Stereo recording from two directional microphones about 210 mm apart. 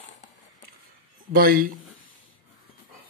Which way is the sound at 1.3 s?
45° right (ahead or behind).